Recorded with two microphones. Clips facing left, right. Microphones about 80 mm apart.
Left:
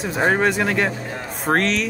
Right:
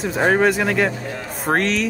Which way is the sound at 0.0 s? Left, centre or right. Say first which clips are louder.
Right 2 dB; centre.